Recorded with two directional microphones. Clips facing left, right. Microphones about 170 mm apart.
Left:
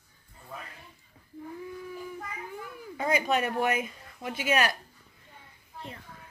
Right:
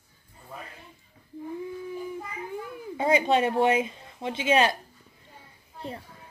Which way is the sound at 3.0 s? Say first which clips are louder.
Right 5 dB; 25° right (ahead or behind).